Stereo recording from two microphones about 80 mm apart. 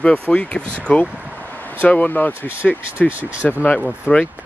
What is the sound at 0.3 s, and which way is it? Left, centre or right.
Speech, centre.